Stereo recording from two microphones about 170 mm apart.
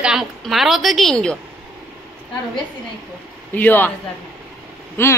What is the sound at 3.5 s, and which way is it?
Speech, 10° left (ahead or behind).